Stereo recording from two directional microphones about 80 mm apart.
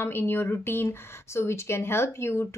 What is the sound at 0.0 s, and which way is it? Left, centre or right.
Speech, left.